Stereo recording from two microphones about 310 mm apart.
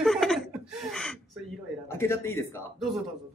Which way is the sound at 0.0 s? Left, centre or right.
Centre.